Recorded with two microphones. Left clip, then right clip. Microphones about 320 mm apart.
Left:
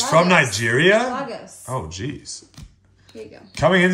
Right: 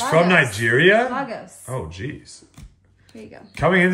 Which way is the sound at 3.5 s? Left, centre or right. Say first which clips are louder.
Left 1 dB; centre.